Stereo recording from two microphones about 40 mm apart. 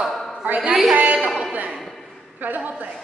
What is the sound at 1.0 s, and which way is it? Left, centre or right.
Speech, right.